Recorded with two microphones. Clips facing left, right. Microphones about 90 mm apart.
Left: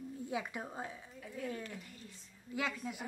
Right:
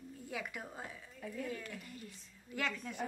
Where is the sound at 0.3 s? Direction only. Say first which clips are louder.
Left 2 dB; 25° left (ahead or behind).